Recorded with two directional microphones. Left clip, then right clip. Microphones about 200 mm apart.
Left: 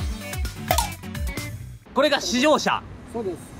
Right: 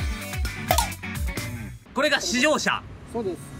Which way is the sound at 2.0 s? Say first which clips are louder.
Left 2 dB; 10° left (ahead or behind).